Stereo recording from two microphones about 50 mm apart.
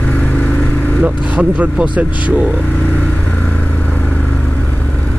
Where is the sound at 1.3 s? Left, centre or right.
Right.